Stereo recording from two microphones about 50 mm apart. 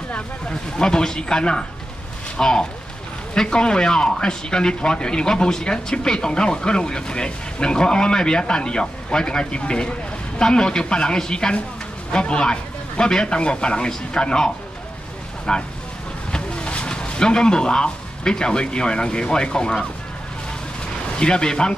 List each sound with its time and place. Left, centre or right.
0.5 s speech: centre
21.2 s speech: centre